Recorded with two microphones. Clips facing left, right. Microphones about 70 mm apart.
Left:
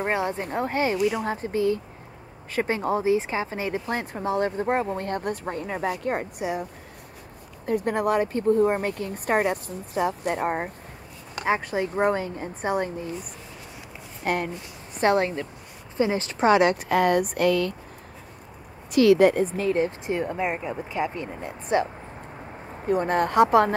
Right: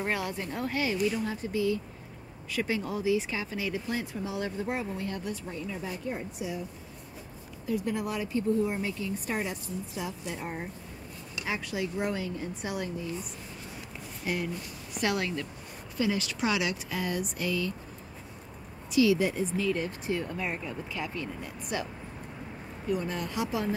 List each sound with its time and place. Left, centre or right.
0.0 s speech: left
0.9 s speech: left
11.3 s speech: left
14.2 s speech: left
15.0 s speech: left
18.9 s a woman's voice: left
22.8 s speech: left